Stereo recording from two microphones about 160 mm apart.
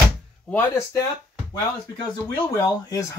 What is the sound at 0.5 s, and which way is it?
Speech, 10° left (ahead or behind).